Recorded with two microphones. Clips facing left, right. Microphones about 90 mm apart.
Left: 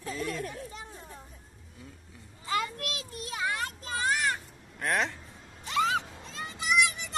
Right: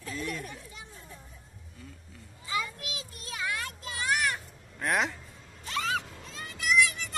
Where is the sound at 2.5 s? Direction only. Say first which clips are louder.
Left 3 dB; 65° left (ahead or behind).